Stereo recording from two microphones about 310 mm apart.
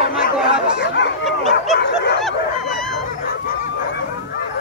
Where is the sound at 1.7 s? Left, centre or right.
Left.